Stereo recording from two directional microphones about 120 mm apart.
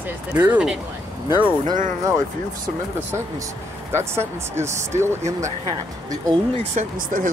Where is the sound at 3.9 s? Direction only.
20° right (ahead or behind).